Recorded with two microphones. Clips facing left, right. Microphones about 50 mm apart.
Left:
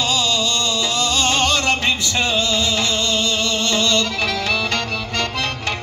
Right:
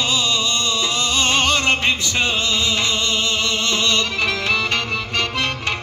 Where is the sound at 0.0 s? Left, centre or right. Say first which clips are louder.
Left 1 dB; right.